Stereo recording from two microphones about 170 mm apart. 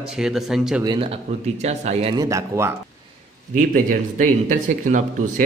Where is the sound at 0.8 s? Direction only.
25° right (ahead or behind).